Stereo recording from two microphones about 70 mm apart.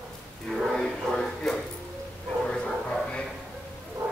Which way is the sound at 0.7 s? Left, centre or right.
Centre.